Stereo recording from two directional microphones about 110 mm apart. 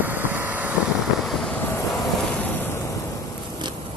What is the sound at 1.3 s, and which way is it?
Vehicle, centre (ahead or behind).